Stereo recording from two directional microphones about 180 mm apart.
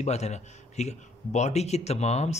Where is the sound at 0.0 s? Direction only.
40° left (ahead or behind).